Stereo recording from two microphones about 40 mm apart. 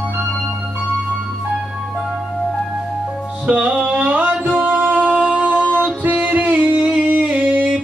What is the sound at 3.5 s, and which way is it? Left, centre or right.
Music, right.